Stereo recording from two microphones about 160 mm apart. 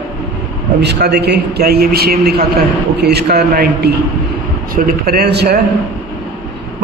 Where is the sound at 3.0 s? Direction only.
90° right.